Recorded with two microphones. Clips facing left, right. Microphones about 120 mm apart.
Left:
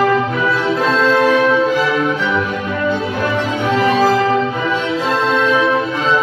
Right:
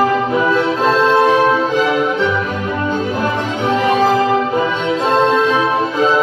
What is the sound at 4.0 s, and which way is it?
Music, 20° right (ahead or behind).